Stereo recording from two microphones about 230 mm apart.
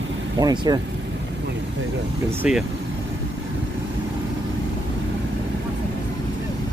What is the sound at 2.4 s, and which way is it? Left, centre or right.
Speech, centre.